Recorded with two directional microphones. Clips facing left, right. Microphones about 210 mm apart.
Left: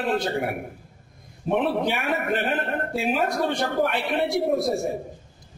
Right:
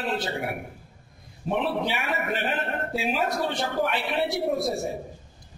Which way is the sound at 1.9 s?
50° left (ahead or behind).